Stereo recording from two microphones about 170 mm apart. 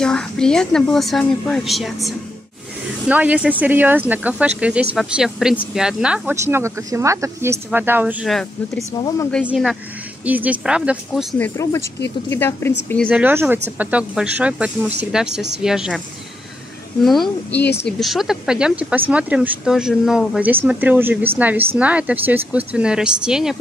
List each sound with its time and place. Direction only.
0.0 s a woman's voice: 5° left (ahead or behind)
6.3 s speech: 15° right (ahead or behind)
8.3 s a woman's voice: centre (ahead or behind)
11.3 s speech: 15° left (ahead or behind)
13.1 s a woman's voice: 10° right (ahead or behind)
17.0 s a woman's voice: centre (ahead or behind)